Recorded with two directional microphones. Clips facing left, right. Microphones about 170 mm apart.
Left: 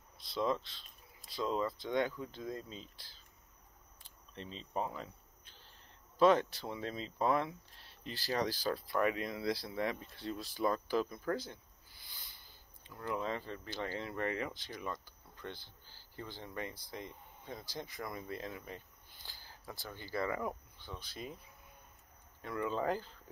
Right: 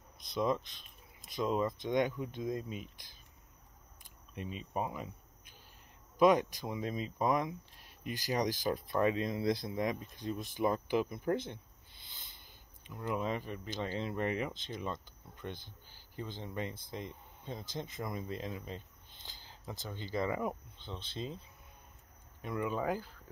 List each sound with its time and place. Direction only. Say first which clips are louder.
0.2 s speech: right 2 dB; 20° right (ahead or behind)
4.0 s a sound: right 4 dB; 15° right (ahead or behind)
6.1 s speech: right 1 dB; 15° right (ahead or behind)